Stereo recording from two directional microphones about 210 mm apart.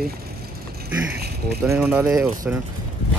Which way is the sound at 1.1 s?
50° right (ahead or behind).